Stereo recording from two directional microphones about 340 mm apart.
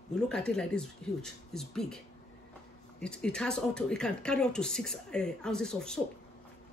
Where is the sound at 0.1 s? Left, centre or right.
Centre.